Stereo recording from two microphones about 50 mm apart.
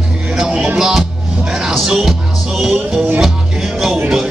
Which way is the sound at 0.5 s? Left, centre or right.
Right.